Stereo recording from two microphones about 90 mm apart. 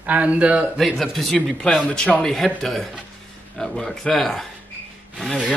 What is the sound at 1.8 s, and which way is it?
Speech, 15° left (ahead or behind).